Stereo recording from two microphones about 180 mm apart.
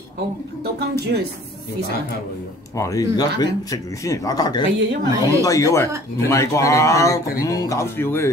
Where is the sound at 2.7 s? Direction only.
15° left (ahead or behind).